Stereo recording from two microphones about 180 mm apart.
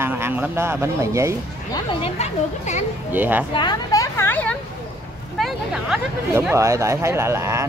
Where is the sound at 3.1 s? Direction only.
10° right (ahead or behind).